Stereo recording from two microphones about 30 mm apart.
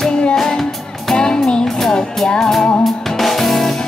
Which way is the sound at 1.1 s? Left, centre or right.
Left.